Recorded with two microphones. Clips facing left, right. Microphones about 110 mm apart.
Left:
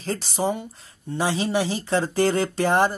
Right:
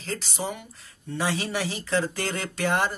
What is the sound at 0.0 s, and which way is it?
Speech, 35° left (ahead or behind).